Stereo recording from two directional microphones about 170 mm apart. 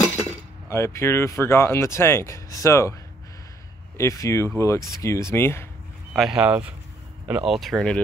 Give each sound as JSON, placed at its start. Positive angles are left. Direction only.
{"t": 0.7, "sound": "speech", "side_deg": 15}
{"t": 4.0, "sound": "speech", "side_deg": 15}
{"t": 6.1, "sound": "speech", "side_deg": -5}